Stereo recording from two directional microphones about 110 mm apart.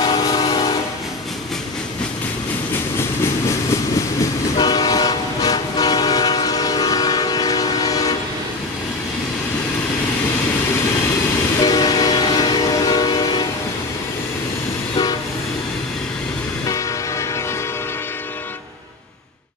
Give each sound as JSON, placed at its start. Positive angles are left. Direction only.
{"t": 0.0, "sound": "train", "side_deg": 40}
{"t": 4.6, "sound": "train", "side_deg": 40}
{"t": 11.6, "sound": "train", "side_deg": 35}